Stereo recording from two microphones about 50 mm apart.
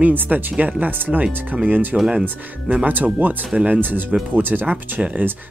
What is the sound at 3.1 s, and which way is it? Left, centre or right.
Speech, right.